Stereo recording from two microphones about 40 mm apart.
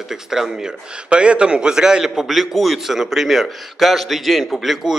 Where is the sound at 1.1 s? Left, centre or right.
Right; by 4.9 s centre.